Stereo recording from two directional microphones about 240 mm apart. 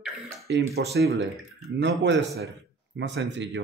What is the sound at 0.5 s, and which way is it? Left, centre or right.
Speech, right.